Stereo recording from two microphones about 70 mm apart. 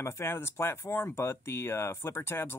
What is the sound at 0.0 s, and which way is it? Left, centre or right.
Speech, left.